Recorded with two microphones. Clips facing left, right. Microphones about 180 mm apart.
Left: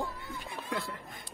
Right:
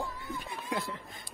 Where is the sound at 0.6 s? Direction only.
20° right (ahead or behind).